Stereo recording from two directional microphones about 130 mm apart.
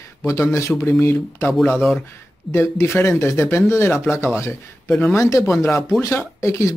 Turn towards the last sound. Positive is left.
turn(degrees=25)  # may be behind; listen again after turning